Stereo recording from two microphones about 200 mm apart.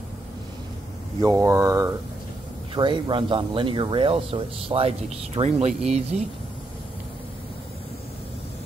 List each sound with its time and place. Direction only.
1.2 s speech: 15° right (ahead or behind); by 6.2 s 35° right (ahead or behind)